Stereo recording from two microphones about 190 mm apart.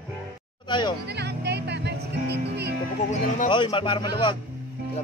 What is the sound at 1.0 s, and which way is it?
Music, 60° right (ahead or behind).